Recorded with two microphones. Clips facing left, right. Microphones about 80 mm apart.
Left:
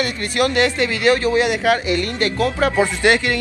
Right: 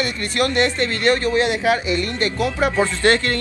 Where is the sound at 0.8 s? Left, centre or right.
Centre.